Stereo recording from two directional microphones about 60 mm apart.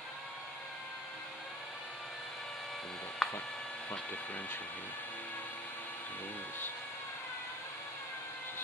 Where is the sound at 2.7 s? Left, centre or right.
Centre.